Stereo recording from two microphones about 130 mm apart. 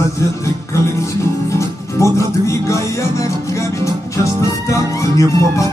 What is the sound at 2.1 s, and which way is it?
Music, 25° left (ahead or behind).